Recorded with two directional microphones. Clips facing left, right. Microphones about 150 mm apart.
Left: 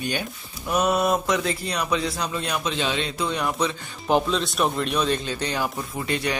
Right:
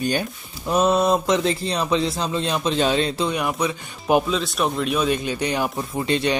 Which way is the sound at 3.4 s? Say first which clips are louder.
Right 1 dB; 10° right (ahead or behind).